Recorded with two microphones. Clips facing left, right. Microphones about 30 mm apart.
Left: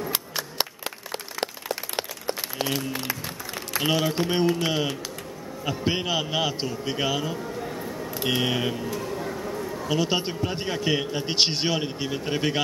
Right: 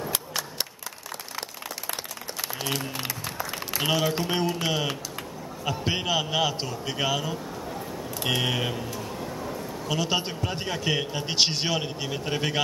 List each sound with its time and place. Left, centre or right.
1.4 s a sound: left
2.6 s speech: left
3.7 s a man's voice: centre
9.8 s a man's voice: centre